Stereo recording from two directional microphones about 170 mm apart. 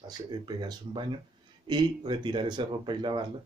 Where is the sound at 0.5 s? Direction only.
25° right (ahead or behind).